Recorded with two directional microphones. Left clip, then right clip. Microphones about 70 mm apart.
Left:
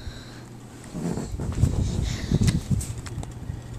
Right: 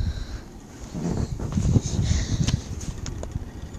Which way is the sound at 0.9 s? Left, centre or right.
Right.